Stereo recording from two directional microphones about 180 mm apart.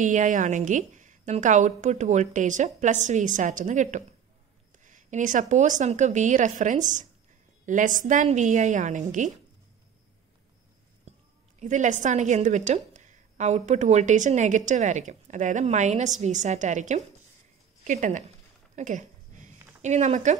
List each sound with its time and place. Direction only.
0.0 s a woman's voice: 45° right (ahead or behind)
11.6 s a woman's voice: 45° right (ahead or behind)
18.8 s a sound: 45° right (ahead or behind)